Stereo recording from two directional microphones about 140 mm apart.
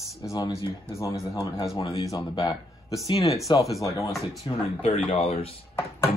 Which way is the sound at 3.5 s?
35° left (ahead or behind).